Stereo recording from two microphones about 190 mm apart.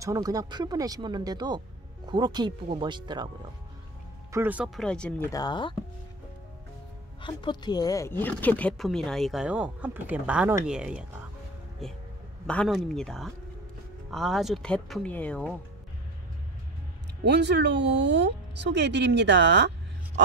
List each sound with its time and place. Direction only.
0.0 s speech: 20° right (ahead or behind)
4.3 s speech: 10° right (ahead or behind)
4.8 s speech: 5° left (ahead or behind)
5.3 s speech: 20° left (ahead or behind)
7.2 s speech: 25° left (ahead or behind); by 15.5 s 5° left (ahead or behind)
17.2 s speech: 65° right (ahead or behind)